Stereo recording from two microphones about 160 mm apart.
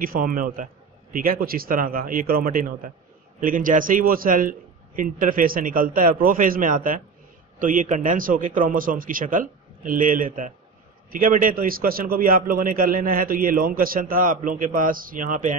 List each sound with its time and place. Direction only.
0.0 s a man's voice: 65° right (ahead or behind)